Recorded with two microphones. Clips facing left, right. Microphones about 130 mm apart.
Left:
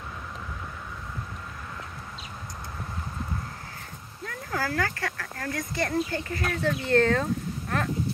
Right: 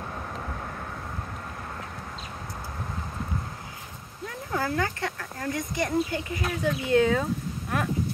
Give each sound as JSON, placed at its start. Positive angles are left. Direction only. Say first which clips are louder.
{"t": 4.3, "sound": "speech", "louder": "right 1 dB", "side_deg": -20}